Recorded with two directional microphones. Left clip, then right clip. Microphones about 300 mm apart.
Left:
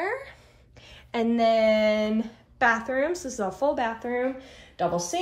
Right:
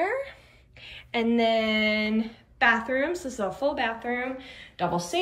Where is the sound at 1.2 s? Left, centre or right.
Centre.